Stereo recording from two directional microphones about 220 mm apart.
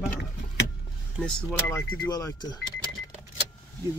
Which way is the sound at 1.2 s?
5° left (ahead or behind).